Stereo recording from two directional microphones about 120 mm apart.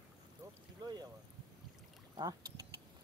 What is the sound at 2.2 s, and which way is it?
Boat, 30° right (ahead or behind).